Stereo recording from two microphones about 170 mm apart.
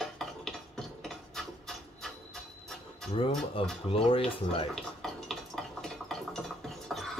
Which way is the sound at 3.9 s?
35° left (ahead or behind).